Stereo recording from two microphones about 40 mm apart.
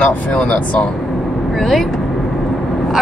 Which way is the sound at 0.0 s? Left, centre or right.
Left.